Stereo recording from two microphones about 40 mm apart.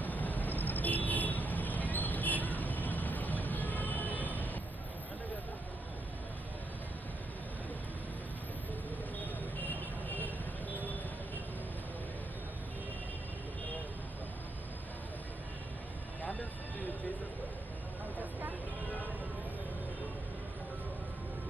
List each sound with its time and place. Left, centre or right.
0.0 s vehicle: left
9.2 s vehicle: left
16.2 s vehicle: left